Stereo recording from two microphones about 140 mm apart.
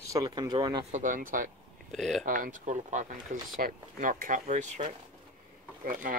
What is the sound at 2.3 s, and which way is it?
Speech, 70° right (ahead or behind).